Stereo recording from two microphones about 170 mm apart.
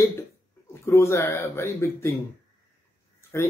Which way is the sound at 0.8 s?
15° left (ahead or behind).